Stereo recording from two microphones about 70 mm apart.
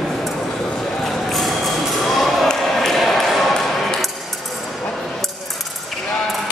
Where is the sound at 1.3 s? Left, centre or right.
Centre.